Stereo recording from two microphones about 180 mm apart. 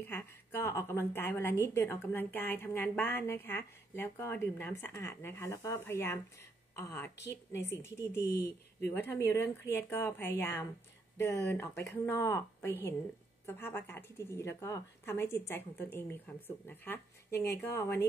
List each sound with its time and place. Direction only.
0.0 s a woman's voice: 10° left (ahead or behind)